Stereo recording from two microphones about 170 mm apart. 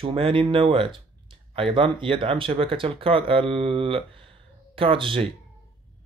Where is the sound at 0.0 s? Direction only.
30° right (ahead or behind).